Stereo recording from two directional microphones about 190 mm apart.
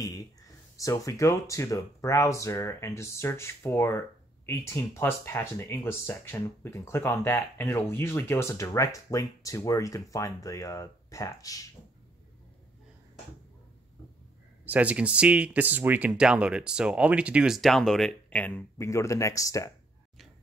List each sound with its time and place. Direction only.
0.0 s speech: 20° left (ahead or behind)
14.7 s speech: 5° right (ahead or behind); by 19.7 s 15° left (ahead or behind)